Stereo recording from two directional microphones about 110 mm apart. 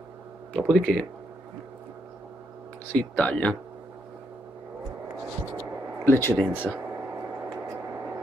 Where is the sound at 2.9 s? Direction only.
10° left (ahead or behind).